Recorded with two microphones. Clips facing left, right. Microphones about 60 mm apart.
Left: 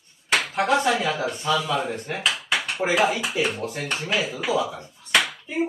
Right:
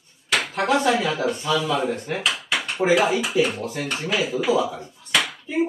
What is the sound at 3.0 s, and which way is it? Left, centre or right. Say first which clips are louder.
Speech: right 3 dB; centre.